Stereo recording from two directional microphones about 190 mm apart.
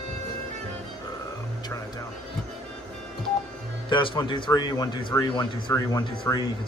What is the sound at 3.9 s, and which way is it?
Speech, 25° left (ahead or behind).